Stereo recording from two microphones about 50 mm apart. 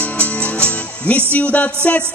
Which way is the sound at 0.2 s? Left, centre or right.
Left.